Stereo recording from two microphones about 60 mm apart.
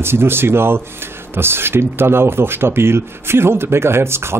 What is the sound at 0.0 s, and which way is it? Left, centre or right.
Speech, right.